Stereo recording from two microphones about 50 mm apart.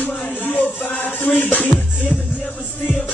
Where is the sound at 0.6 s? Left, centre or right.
Left.